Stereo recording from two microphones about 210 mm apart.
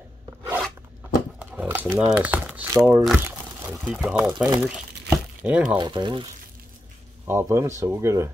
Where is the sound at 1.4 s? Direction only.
10° right (ahead or behind).